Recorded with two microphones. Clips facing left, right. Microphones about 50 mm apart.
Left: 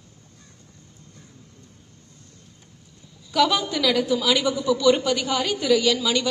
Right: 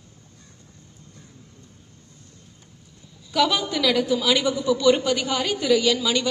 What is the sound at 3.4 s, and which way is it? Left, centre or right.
Speech, left.